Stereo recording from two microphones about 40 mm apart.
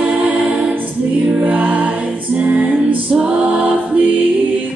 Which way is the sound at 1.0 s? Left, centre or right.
Right.